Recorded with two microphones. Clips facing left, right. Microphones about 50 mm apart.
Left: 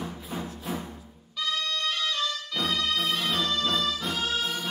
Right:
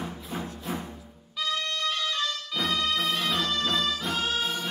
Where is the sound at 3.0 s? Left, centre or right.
Centre.